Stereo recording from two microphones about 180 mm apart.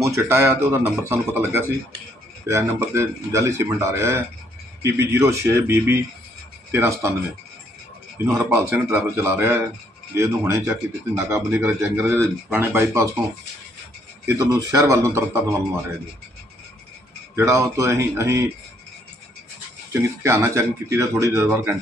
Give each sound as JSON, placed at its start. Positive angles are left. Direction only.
{"t": 0.0, "sound": "speech", "side_deg": -15}
{"t": 8.3, "sound": "speech", "side_deg": -10}
{"t": 14.2, "sound": "speech", "side_deg": -15}
{"t": 17.4, "sound": "speech", "side_deg": -15}
{"t": 19.9, "sound": "speech", "side_deg": -15}